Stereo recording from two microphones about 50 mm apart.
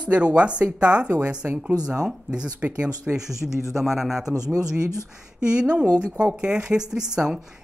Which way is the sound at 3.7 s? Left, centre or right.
Centre.